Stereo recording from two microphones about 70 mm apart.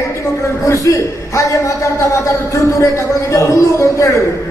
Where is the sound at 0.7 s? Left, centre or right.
Left.